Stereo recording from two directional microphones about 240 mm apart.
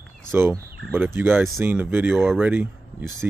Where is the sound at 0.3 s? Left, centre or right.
Centre.